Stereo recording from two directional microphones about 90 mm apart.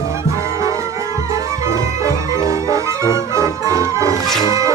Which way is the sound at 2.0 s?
35° right (ahead or behind).